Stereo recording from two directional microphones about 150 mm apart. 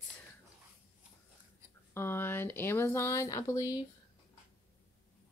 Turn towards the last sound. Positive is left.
turn(degrees=25)  # may be behind; listen again after turning